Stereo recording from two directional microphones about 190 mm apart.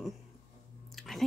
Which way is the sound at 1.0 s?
Centre (ahead or behind).